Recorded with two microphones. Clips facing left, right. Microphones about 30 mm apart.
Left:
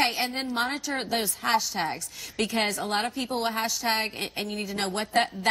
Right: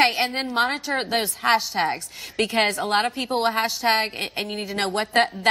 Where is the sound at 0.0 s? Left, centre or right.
Right.